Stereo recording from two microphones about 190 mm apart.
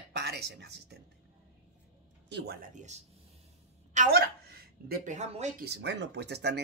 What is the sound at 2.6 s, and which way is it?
Speech, 40° right (ahead or behind).